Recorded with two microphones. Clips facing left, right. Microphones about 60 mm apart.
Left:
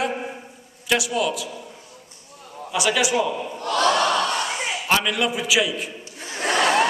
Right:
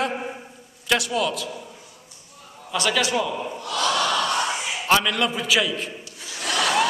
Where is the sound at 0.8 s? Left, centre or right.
Centre.